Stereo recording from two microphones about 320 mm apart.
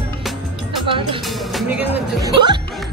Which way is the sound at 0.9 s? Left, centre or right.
Centre.